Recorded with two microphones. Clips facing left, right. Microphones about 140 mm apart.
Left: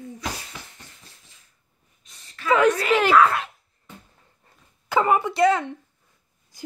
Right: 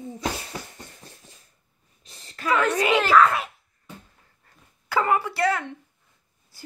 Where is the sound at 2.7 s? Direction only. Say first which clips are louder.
Even; 15° right (ahead or behind).